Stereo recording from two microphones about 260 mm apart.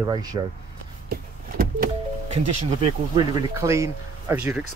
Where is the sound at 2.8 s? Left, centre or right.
Centre.